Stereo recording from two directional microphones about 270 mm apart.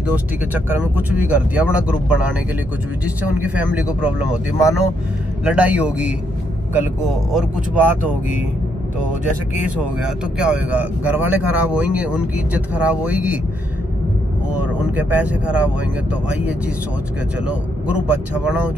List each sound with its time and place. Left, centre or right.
0.1 s speech: centre
7.3 s speech: centre
10.0 s speech: centre
14.6 s speech: centre
18.4 s speech: centre